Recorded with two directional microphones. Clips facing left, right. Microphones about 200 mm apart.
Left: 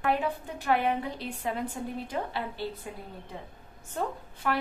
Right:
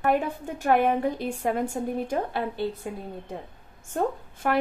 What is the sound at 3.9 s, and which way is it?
Speech, 45° right (ahead or behind).